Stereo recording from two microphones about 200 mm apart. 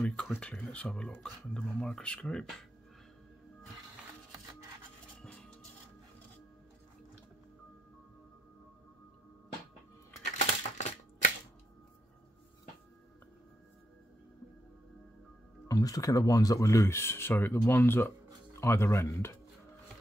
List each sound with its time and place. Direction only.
0.0 s speech: 5° left (ahead or behind)
5.2 s music: 5° left (ahead or behind)
10.4 s crushing: 35° left (ahead or behind)
15.7 s speech: 15° left (ahead or behind)